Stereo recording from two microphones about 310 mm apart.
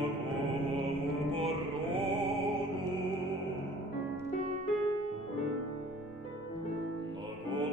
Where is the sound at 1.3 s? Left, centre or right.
Centre.